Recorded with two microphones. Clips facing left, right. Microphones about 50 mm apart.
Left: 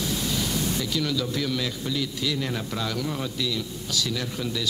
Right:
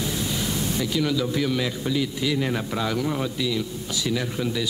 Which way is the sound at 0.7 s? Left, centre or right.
Centre.